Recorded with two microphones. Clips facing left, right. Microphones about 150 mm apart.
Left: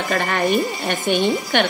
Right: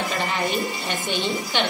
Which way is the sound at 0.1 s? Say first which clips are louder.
Left 6 dB; 55° left (ahead or behind).